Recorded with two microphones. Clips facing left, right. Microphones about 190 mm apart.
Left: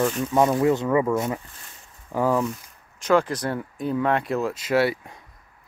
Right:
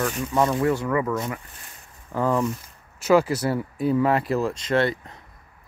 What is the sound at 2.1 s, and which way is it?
Speech, 5° left (ahead or behind).